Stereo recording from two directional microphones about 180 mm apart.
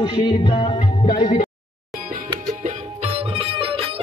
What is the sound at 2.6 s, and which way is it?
Music, 35° right (ahead or behind).